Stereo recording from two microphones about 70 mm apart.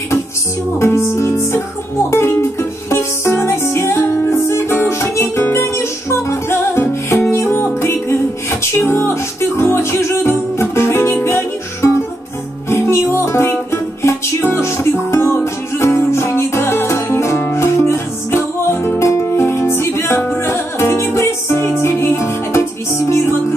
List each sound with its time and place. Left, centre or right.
0.7 s music: left